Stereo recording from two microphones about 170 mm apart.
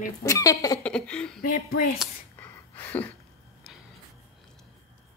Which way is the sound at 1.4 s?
55° left (ahead or behind).